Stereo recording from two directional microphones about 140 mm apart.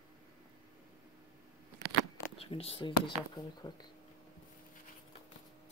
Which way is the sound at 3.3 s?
30° left (ahead or behind).